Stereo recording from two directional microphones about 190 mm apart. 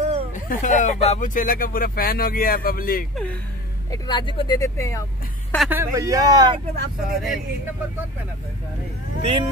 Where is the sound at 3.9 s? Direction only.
25° left (ahead or behind).